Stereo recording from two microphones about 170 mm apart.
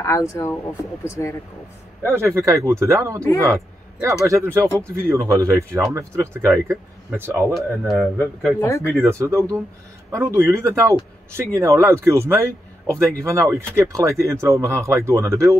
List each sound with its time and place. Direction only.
0.0 s speech: 20° left (ahead or behind)
2.0 s a man's voice: 15° right (ahead or behind)
4.5 s speech: 15° left (ahead or behind)
4.8 s speech: 15° right (ahead or behind)
7.9 s a man's voice: centre (ahead or behind)
8.5 s speech: 15° left (ahead or behind)
8.9 s speech: 15° right (ahead or behind)